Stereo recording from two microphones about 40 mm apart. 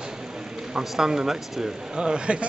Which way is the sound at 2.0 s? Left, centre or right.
Right.